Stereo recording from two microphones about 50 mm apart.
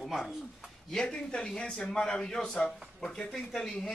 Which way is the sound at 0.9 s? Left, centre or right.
Centre.